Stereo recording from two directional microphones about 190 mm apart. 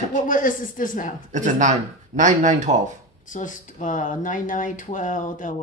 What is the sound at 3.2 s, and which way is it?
Speech, 40° left (ahead or behind).